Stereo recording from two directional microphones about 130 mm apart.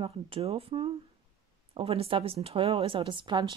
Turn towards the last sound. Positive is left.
turn(degrees=-35)  # may be behind; listen again after turning